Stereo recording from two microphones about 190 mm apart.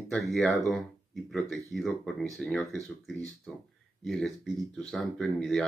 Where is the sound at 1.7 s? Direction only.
Centre (ahead or behind).